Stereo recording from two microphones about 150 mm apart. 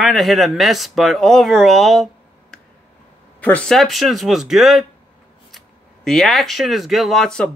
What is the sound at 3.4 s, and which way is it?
Speech, 10° left (ahead or behind).